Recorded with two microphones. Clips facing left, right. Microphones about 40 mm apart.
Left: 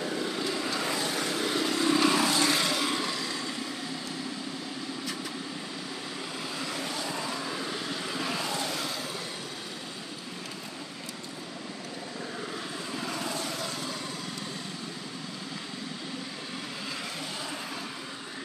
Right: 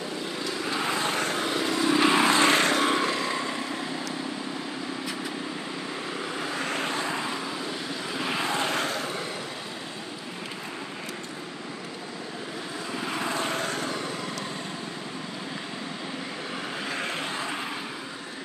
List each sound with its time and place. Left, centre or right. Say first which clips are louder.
0.7 s vehicle: right 3 dB; right
1.5 s vehicle: right 1 dB; centre
2.0 s vehicle: right 5 dB; right
6.4 s vehicle: right 5 dB; right
7.2 s vehicle: right 2 dB; centre
7.5 s vehicle: right 1 dB; centre
8.3 s vehicle: right 8 dB; right
13.0 s vehicle: right 6 dB; right
16.9 s vehicle: right 8 dB; right